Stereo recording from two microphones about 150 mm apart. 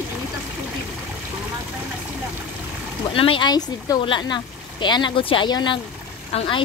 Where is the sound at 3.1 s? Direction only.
35° left (ahead or behind).